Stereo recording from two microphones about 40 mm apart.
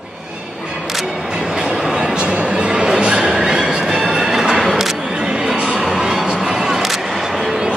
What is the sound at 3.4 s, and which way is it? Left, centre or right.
Train, centre.